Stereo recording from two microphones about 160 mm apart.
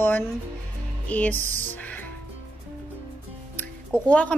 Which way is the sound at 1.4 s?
50° right (ahead or behind).